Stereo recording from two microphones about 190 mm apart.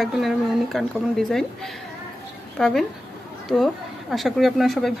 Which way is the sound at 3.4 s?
Centre (ahead or behind).